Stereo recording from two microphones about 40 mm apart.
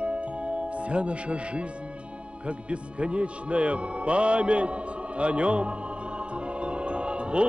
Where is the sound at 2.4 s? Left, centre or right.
Right.